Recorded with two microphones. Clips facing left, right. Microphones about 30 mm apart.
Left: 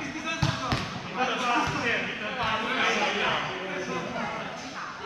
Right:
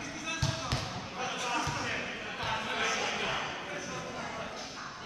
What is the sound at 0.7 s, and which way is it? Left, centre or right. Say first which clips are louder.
Basketball bounce: left 7 dB; left.